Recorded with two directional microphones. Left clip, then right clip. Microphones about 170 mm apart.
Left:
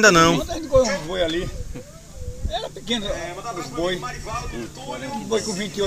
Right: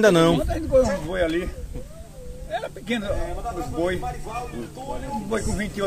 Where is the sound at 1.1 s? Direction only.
Centre (ahead or behind).